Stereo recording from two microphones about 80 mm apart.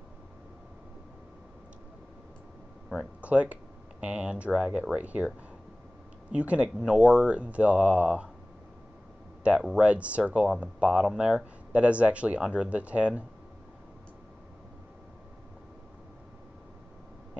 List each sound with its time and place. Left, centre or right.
3.2 s speech: centre
6.3 s speech: centre
9.4 s speech: centre